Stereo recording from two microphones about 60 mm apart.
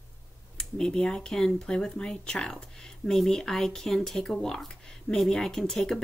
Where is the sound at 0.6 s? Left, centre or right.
Centre.